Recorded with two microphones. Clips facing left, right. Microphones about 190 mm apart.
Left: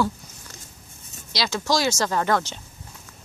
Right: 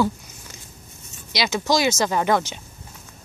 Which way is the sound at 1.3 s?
20° right (ahead or behind).